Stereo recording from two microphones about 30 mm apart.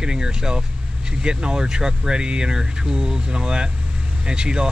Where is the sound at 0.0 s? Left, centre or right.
Right.